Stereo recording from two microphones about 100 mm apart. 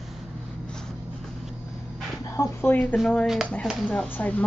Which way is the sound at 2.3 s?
25° left (ahead or behind).